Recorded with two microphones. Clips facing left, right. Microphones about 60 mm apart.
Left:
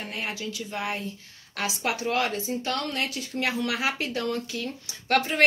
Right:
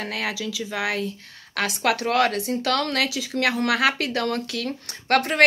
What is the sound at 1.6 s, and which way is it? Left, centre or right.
Speech, right.